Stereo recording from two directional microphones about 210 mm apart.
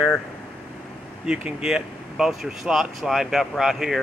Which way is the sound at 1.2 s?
5° right (ahead or behind).